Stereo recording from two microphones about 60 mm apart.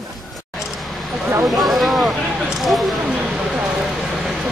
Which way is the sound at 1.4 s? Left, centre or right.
Centre.